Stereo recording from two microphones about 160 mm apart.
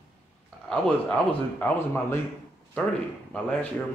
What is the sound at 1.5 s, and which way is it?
Speech, 10° left (ahead or behind).